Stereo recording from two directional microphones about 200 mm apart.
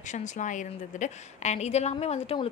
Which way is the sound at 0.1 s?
35° left (ahead or behind).